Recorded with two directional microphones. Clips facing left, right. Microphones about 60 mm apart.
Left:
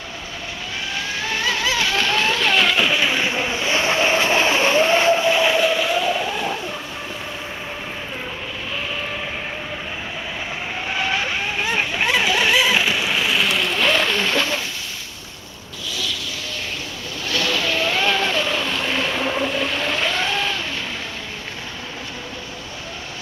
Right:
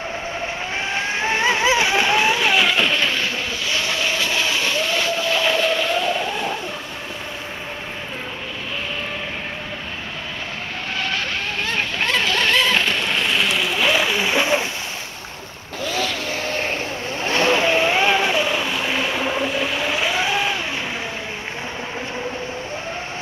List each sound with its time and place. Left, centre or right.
0.9 s vehicle: right; by 6.6 s centre
11.0 s vehicle: centre
15.8 s vehicle: right; by 20.5 s centre